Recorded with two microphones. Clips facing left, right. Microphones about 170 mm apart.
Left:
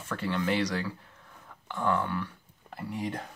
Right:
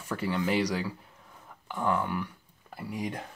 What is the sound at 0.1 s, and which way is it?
Speech, 10° right (ahead or behind).